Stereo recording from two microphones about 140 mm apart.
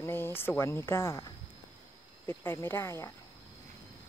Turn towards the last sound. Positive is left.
turn(degrees=20)  # may be behind; listen again after turning